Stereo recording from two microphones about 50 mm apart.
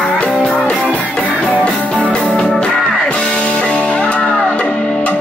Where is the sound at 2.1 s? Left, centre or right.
Centre.